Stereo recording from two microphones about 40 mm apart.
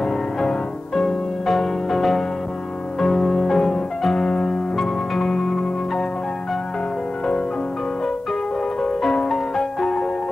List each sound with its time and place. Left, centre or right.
0.0 s music: centre
9.1 s music: centre